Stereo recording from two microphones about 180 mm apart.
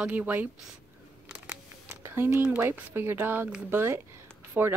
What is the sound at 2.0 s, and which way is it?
Speech, 10° right (ahead or behind).